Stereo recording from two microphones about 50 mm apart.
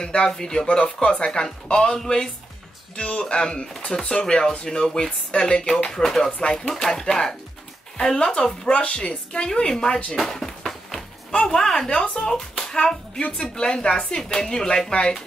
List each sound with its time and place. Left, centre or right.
0.0 s speech: centre
6.3 s speech: centre
6.7 s speech: centre
10.1 s a sound: centre
11.3 s speech: centre